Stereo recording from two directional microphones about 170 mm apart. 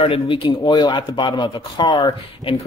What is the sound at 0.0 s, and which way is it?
Speech, 30° left (ahead or behind).